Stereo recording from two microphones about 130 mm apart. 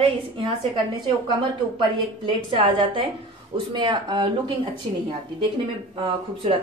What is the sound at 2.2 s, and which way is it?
A woman's voice, 45° right (ahead or behind).